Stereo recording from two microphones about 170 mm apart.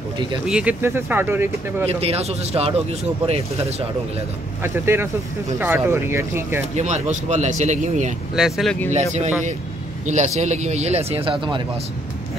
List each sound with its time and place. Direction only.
0.5 s speech: 5° right (ahead or behind)
1.9 s speech: 35° right (ahead or behind)
4.6 s speech: 15° right (ahead or behind)
6.7 s speech: 40° right (ahead or behind)
8.4 s speech: centre (ahead or behind)
8.9 s speech: 45° right (ahead or behind); by 11.6 s 30° right (ahead or behind)